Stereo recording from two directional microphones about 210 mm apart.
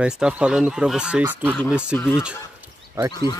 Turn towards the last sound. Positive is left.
turn(degrees=20)  # may be behind; listen again after turning